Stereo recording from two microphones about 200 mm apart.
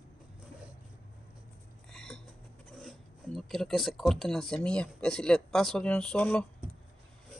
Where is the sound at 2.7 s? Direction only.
Centre (ahead or behind).